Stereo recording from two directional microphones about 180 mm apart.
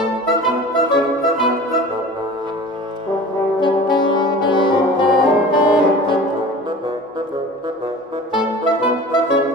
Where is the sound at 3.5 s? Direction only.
25° left (ahead or behind).